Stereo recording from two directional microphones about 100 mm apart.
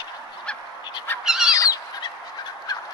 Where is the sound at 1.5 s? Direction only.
35° left (ahead or behind).